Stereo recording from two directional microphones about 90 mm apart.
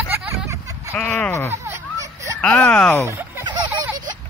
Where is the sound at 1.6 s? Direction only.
35° right (ahead or behind).